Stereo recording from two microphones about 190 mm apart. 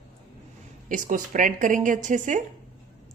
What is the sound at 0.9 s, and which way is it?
A woman's voice, 45° right (ahead or behind).